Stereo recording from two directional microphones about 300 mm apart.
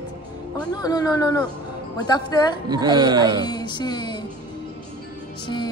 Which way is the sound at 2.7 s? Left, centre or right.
Centre.